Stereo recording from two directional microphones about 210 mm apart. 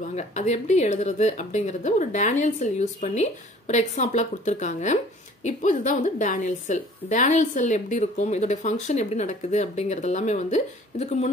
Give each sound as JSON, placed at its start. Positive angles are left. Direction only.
{"t": 0.1, "sound": "speech", "side_deg": 35}